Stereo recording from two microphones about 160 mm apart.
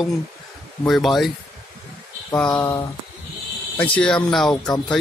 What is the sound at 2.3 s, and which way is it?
Speech, 10° left (ahead or behind).